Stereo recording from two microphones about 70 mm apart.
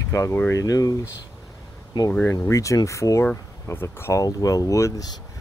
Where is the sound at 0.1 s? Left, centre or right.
Left.